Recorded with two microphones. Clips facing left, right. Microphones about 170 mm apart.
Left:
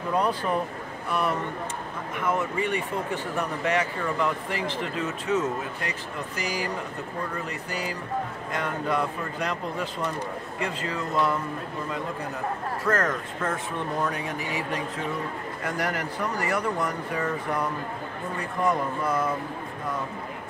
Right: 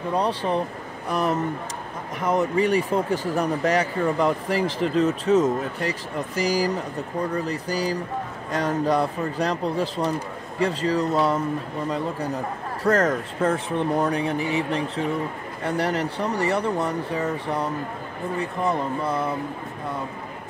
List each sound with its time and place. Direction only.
0.2 s speech: 35° right (ahead or behind)
12.8 s speech: 35° right (ahead or behind)
18.7 s speech: 30° right (ahead or behind)